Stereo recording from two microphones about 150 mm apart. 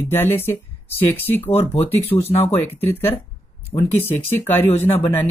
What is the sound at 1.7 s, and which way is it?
Speech, 40° left (ahead or behind).